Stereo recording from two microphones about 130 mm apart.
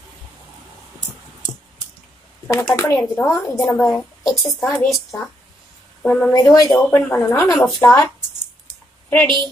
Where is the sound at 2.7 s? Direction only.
20° left (ahead or behind).